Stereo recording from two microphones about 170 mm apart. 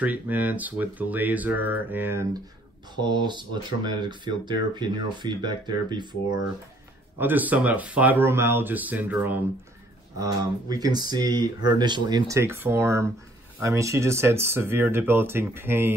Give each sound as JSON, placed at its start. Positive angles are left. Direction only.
{"t": 0.0, "sound": "speech", "side_deg": -10}
{"t": 3.0, "sound": "speech", "side_deg": -25}
{"t": 7.2, "sound": "speech", "side_deg": -10}
{"t": 10.1, "sound": "speech", "side_deg": -20}